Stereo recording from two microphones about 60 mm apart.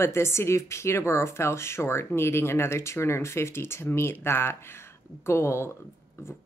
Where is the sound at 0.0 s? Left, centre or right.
Left.